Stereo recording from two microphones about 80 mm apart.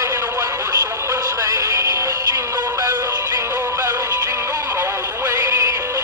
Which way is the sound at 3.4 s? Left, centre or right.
Right.